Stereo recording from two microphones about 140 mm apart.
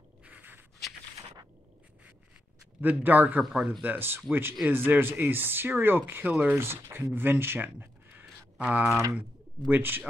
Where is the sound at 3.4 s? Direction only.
5° right (ahead or behind).